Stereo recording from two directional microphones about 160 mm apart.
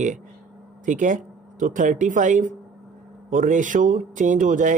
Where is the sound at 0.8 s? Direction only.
50° right (ahead or behind).